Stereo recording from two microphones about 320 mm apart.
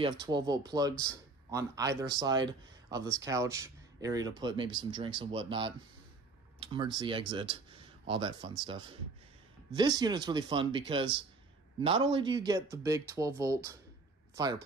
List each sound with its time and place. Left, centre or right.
0.0 s speech: centre